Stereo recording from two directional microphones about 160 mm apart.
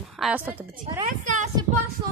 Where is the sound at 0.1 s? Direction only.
Centre (ahead or behind).